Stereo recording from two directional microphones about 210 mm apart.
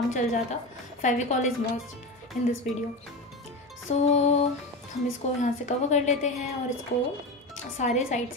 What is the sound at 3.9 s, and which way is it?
A woman's voice, 35° left (ahead or behind).